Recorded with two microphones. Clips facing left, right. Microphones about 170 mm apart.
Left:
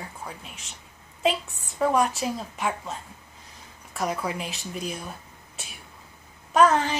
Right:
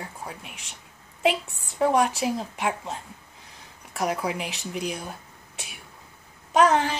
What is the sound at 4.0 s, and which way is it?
Speech, 15° right (ahead or behind).